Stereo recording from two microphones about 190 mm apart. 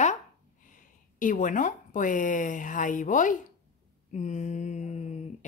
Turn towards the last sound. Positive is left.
turn(degrees=35)  # may be behind; listen again after turning